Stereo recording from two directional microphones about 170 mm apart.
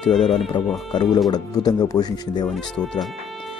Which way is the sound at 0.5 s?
25° left (ahead or behind).